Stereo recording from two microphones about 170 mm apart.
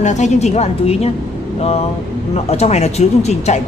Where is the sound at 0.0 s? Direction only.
45° left (ahead or behind).